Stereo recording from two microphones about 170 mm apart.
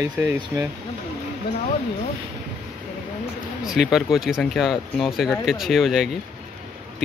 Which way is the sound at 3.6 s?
Centre (ahead or behind).